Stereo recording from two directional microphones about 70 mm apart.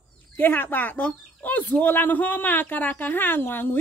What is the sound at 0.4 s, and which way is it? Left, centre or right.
Speech, left.